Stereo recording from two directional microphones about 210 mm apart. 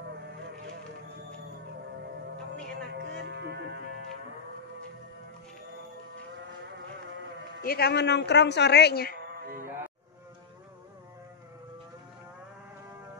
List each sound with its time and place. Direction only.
2.9 s music: 55° right (ahead or behind)
7.6 s speech: 50° left (ahead or behind)